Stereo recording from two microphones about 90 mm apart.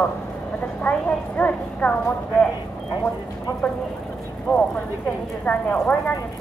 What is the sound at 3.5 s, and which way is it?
Speech, 35° left (ahead or behind).